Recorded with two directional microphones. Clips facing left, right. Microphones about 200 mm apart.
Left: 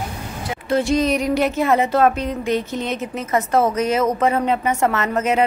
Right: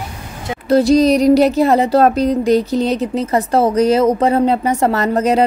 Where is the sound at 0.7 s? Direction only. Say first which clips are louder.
Right 7 dB; 35° right (ahead or behind).